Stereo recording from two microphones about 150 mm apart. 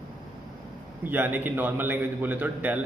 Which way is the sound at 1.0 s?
15° right (ahead or behind).